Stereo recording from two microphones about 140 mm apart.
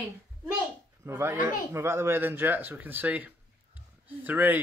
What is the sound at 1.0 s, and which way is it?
Speech, 20° right (ahead or behind).